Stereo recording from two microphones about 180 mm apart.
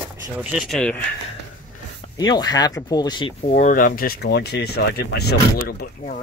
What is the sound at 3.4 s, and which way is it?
Speech, 45° left (ahead or behind).